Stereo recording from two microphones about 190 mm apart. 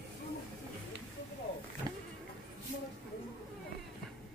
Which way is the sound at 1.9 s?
20° right (ahead or behind).